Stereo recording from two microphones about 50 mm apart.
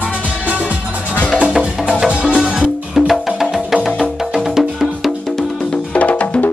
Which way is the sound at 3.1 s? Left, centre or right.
Centre.